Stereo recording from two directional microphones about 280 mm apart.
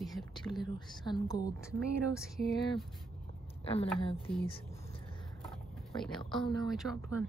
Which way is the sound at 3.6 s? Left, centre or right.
Centre.